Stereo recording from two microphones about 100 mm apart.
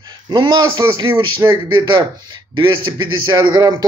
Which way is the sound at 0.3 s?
45° right (ahead or behind).